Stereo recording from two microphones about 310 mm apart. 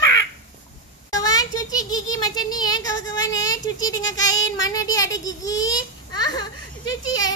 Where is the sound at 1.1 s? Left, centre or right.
Centre.